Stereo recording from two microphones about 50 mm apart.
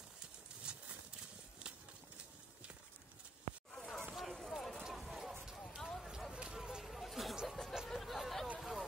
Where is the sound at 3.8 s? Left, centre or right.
Centre.